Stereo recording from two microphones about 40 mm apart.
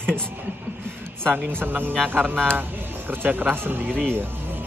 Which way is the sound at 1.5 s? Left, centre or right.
Right.